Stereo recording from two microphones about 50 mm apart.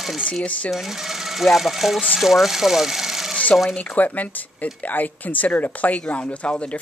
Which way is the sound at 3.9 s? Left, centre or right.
Left.